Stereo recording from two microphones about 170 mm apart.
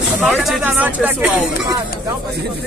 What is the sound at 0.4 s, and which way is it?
Speech, centre (ahead or behind).